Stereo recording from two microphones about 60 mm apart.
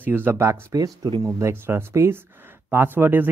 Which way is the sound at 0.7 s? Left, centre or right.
Right.